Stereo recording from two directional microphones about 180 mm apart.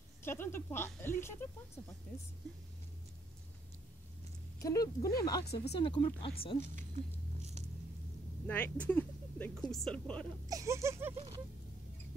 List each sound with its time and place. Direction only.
0.2 s a woman's voice: 15° left (ahead or behind)
4.6 s speech: 20° left (ahead or behind)
5.4 s speech: 65° left (ahead or behind)
5.8 s speech: 25° left (ahead or behind)
6.6 s speech: 45° right (ahead or behind)
8.5 s a woman's voice: 10° left (ahead or behind)
10.5 s a sound: 15° right (ahead or behind)
11.1 s a sound: 25° right (ahead or behind)